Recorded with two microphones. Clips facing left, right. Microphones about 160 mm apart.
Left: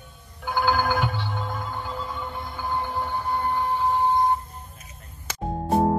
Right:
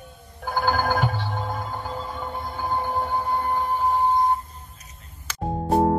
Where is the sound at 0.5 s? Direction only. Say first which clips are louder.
Even; 45° right (ahead or behind).